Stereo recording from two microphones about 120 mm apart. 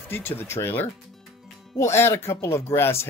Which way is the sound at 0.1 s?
20° left (ahead or behind).